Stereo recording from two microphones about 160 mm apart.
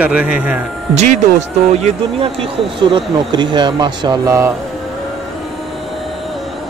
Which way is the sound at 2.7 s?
30° right (ahead or behind).